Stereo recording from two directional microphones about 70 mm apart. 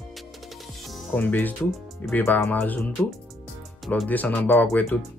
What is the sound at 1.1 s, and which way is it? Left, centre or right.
Speech, left.